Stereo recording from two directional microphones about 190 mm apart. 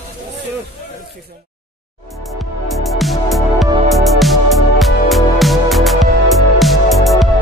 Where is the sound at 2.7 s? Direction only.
Centre (ahead or behind).